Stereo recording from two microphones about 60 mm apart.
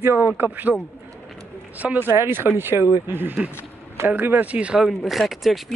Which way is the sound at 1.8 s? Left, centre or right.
Right.